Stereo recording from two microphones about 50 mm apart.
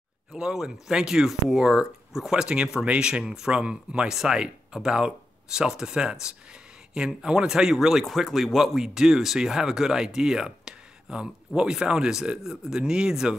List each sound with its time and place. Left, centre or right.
0.3 s speech: centre